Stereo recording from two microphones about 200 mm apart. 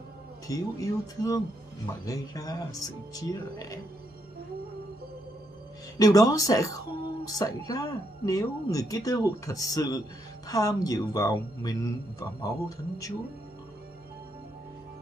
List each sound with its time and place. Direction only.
0.5 s speech: 15° left (ahead or behind)
5.9 s speech: 15° left (ahead or behind)